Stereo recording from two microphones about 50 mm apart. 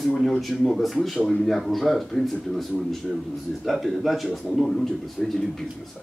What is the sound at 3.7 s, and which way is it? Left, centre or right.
Speech, centre.